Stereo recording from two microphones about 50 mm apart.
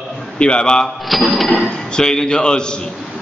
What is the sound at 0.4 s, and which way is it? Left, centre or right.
Speech, centre.